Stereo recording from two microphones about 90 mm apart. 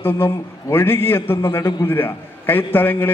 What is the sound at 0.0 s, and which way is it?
A man's voice, 25° left (ahead or behind).